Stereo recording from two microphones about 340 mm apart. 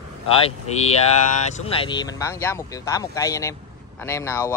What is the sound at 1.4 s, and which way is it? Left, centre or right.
Speech, centre.